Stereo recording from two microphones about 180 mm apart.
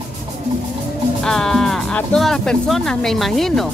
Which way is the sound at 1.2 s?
5° left (ahead or behind).